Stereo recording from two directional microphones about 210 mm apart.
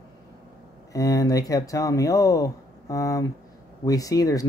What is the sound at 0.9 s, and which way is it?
Speech, 15° left (ahead or behind).